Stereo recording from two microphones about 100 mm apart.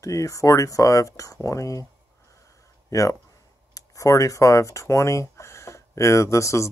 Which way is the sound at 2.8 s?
35° left (ahead or behind).